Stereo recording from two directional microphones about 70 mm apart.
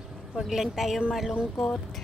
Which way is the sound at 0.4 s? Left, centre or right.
Centre.